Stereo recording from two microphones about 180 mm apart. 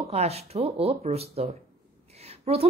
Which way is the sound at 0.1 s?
35° right (ahead or behind).